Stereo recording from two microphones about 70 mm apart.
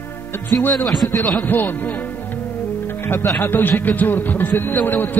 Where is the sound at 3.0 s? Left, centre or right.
Left.